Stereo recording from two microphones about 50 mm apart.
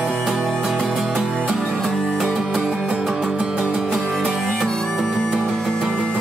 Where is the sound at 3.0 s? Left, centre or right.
Centre.